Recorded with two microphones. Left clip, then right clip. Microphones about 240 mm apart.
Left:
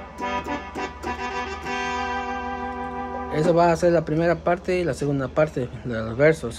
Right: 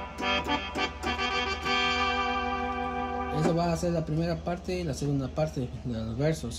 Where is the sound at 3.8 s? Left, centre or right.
Left.